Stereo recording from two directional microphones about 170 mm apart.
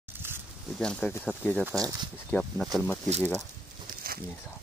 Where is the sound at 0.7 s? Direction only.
5° left (ahead or behind).